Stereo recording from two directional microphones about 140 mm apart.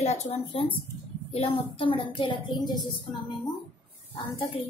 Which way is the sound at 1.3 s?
40° left (ahead or behind).